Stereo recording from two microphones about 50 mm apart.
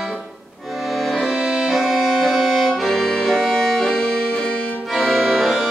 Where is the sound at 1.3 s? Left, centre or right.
Centre.